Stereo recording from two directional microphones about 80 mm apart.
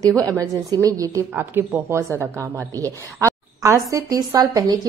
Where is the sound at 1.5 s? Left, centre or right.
Right.